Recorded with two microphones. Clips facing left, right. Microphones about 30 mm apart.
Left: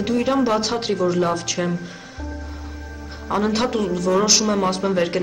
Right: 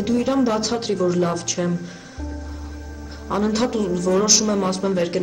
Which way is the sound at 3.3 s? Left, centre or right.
Centre.